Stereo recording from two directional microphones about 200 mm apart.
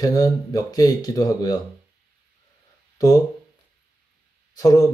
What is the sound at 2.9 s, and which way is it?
Speech, 20° left (ahead or behind).